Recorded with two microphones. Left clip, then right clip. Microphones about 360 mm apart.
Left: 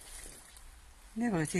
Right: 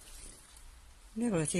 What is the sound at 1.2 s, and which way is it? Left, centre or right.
Speech, centre.